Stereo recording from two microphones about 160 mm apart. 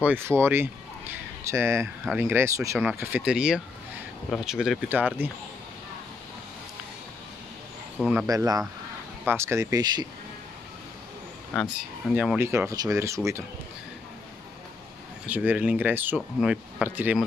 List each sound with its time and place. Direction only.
0.0 s speech: 15° right (ahead or behind)
2.8 s speech: 5° right (ahead or behind)
8.0 s speech: 5° right (ahead or behind)
8.3 s speech: 20° right (ahead or behind)
12.2 s speech: 10° right (ahead or behind)
15.2 s speech: 10° right (ahead or behind)